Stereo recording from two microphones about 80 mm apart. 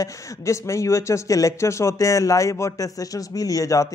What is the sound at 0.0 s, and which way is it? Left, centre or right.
A man's voice, left.